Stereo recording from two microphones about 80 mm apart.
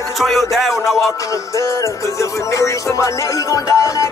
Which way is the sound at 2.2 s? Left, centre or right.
Left.